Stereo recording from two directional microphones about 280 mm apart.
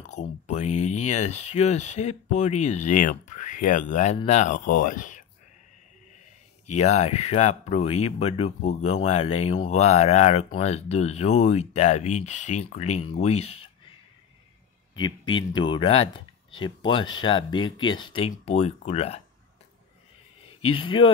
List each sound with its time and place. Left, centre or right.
0.1 s speech: left
6.7 s speech: left
15.0 s speech: centre
20.4 s speech: centre